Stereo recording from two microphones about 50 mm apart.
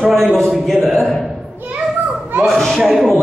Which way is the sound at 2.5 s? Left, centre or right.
Centre.